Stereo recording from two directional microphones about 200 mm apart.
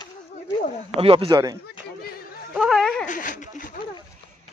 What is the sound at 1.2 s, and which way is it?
Speech, 20° right (ahead or behind).